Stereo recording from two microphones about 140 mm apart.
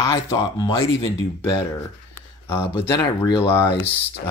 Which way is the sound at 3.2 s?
35° left (ahead or behind).